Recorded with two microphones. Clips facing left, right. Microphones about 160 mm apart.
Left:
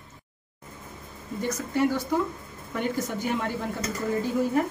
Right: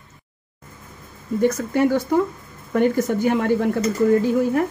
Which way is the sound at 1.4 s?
60° right (ahead or behind).